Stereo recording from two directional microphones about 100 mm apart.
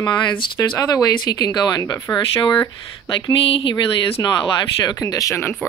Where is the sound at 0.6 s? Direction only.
30° left (ahead or behind).